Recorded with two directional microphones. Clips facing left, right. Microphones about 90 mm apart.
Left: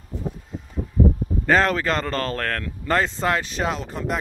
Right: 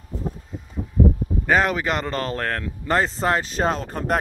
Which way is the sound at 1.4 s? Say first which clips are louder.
Left 1 dB; 10° right (ahead or behind).